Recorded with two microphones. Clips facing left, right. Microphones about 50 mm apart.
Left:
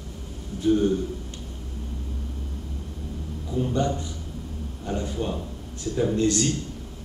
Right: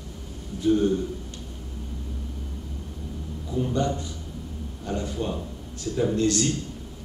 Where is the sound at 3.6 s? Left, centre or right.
Centre.